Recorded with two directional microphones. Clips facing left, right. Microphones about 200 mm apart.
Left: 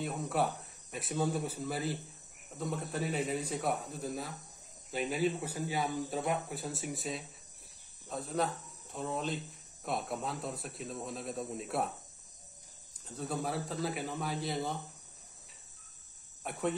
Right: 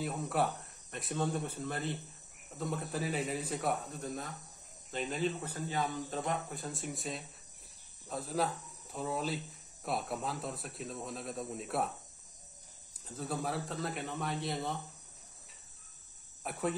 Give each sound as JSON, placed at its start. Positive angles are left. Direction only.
{"t": 0.0, "sound": "speech", "side_deg": 0}
{"t": 13.0, "sound": "speech", "side_deg": 0}
{"t": 16.4, "sound": "speech", "side_deg": 0}